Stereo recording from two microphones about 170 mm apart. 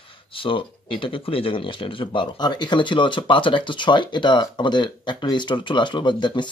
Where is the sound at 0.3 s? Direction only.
30° left (ahead or behind).